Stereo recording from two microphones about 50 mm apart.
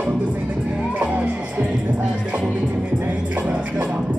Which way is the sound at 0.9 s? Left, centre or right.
Right.